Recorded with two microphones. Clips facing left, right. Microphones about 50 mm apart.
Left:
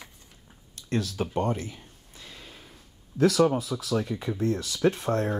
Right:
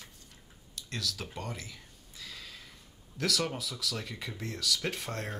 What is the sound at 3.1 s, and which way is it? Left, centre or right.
Speech, left.